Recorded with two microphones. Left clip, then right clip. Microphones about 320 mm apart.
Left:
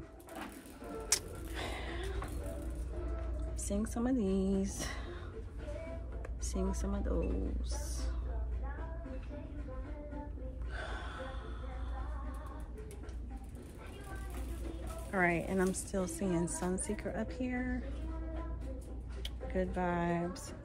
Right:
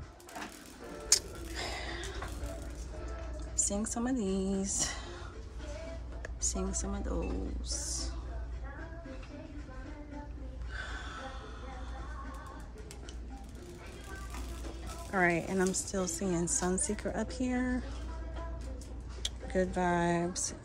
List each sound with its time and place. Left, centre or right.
1.0 s a sound: centre
3.5 s speech: centre
6.4 s speech: centre
10.7 s gasp: centre
15.0 s a woman's voice: centre
19.2 s speech: centre